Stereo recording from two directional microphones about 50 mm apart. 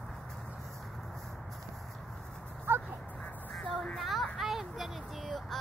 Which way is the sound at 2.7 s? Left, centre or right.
Right.